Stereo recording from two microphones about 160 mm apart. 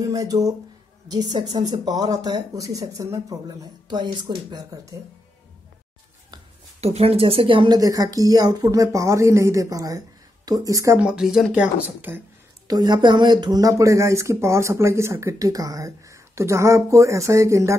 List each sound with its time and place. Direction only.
0.1 s speech: 25° right (ahead or behind)
6.8 s speech: 40° right (ahead or behind); by 11.0 s 20° right (ahead or behind)
11.0 s speech: 5° right (ahead or behind)
12.6 s speech: 25° right (ahead or behind)